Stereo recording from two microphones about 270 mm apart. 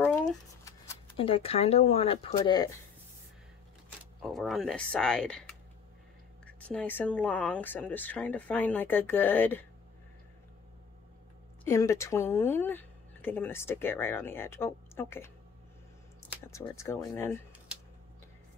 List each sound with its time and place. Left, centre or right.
0.7 s speech: centre
4.2 s speech: centre
11.6 s speech: centre
16.4 s speech: centre